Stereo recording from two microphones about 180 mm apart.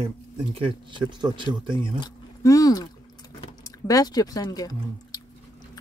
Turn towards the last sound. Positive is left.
turn(degrees=20)  # may be behind; listen again after turning